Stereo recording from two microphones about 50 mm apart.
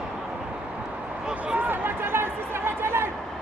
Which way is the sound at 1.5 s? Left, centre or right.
Right.